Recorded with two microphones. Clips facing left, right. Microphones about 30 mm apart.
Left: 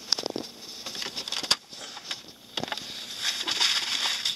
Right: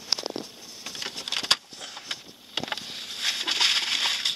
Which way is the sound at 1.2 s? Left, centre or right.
Centre.